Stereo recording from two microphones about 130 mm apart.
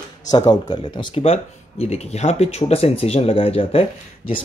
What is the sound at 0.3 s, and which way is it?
Speech, 30° left (ahead or behind).